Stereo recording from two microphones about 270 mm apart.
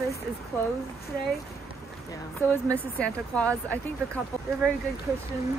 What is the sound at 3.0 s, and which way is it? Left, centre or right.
Speech, centre.